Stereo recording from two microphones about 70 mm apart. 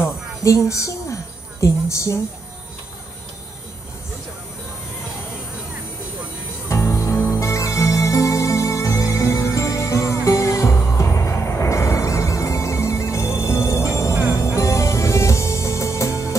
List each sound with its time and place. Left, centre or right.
0.0 s music: left
6.7 s music: left